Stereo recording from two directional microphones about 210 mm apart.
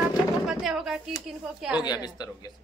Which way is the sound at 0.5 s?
Centre (ahead or behind).